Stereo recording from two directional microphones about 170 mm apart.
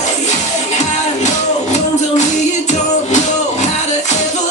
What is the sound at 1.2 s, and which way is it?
Music, 45° left (ahead or behind).